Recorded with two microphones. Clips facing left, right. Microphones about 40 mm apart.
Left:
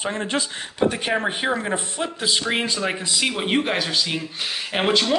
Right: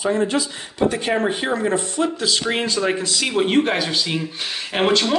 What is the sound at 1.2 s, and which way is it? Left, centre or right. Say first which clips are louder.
Speech: right 3 dB; left.